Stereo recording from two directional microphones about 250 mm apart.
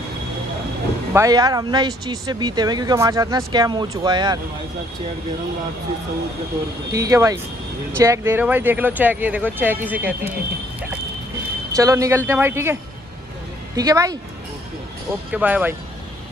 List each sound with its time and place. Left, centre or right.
1.1 s speech: centre
6.9 s speech: centre
11.7 s speech: centre
13.7 s speech: centre
15.3 s speech: centre